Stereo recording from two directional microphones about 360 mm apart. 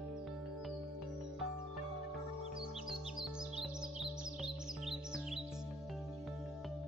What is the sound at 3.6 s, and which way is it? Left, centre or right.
Music, centre.